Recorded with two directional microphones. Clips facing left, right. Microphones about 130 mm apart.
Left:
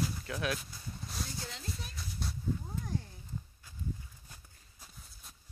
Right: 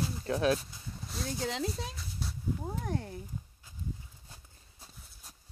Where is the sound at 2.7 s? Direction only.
70° right (ahead or behind).